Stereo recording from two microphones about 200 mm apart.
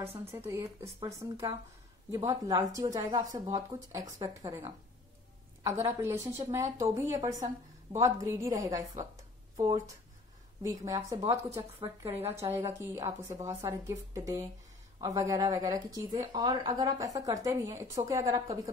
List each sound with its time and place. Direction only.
0.5 s a woman's voice: 15° right (ahead or behind)
10.6 s speech: 15° right (ahead or behind)